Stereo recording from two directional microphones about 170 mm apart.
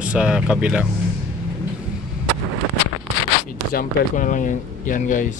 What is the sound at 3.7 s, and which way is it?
Speech, 50° left (ahead or behind).